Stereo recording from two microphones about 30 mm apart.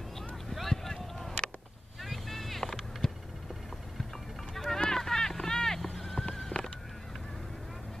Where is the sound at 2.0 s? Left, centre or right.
Centre.